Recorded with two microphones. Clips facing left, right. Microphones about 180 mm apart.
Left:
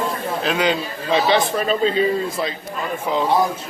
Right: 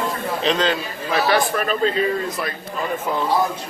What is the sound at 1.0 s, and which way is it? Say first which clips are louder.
Speech: left 2 dB; 25° left (ahead or behind).